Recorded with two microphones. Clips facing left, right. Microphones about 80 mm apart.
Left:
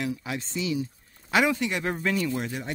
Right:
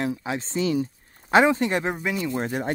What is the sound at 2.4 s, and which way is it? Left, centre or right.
Speech, right.